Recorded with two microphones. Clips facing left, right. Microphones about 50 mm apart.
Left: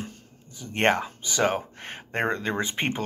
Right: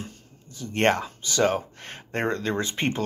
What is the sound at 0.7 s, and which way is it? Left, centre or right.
Speech, centre.